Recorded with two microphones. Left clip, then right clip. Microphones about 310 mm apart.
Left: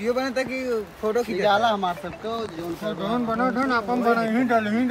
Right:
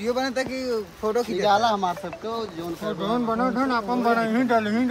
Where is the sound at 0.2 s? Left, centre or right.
Centre.